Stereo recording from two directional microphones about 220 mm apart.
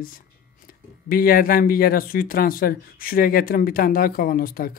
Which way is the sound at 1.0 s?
40° left (ahead or behind).